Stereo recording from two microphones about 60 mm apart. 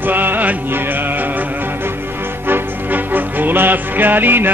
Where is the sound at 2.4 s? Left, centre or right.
Right.